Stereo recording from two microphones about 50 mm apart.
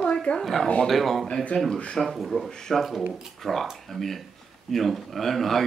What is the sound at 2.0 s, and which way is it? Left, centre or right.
Speech, centre.